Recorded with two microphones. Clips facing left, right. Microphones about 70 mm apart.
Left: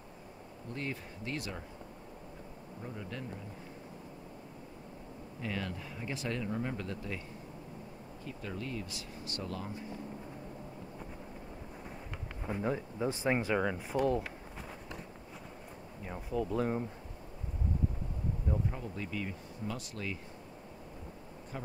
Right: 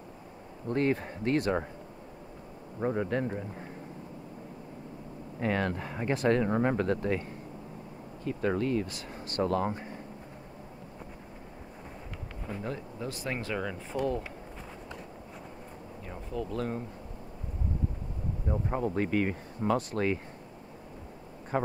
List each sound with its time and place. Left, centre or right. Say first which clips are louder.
0.7 s speech: right 12 dB; right
2.8 s speech: right 14 dB; right
5.4 s speech: right 9 dB; right
8.3 s speech: right 12 dB; right
12.4 s speech: left 3 dB; centre
13.9 s speech: even; centre
16.1 s speech: left 1 dB; centre
18.7 s speech: right 11 dB; right